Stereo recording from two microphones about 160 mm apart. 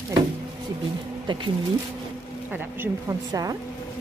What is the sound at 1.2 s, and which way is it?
Speech, 30° right (ahead or behind).